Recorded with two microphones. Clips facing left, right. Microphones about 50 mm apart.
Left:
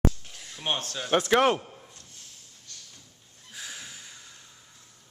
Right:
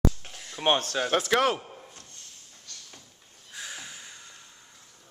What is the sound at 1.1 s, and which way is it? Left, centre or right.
Speech, centre.